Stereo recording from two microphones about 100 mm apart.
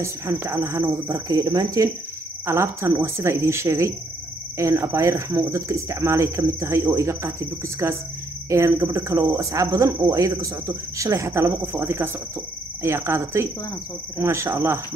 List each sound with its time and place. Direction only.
0.0 s speech: 30° right (ahead or behind)
2.4 s speech: 30° right (ahead or behind)